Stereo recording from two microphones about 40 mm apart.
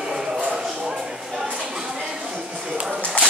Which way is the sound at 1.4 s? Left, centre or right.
Centre.